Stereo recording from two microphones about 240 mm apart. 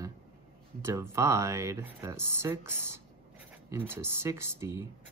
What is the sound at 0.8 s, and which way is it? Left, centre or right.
Speech, centre.